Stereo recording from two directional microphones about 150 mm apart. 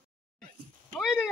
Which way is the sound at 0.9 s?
Centre (ahead or behind).